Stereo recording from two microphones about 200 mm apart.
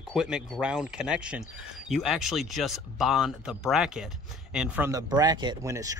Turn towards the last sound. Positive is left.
turn(degrees=-15)  # may be behind; listen again after turning